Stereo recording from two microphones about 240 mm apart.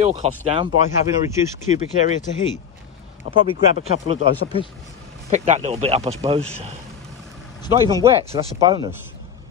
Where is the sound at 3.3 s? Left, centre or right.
Left.